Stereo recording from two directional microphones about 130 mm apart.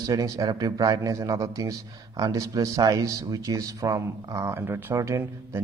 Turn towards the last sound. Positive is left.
turn(degrees=-25)  # may be behind; listen again after turning